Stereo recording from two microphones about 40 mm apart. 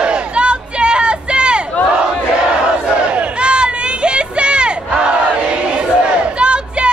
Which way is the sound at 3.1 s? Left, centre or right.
Right.